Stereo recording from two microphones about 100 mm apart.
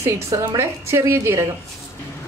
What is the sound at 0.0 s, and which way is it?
A woman's voice, 30° right (ahead or behind).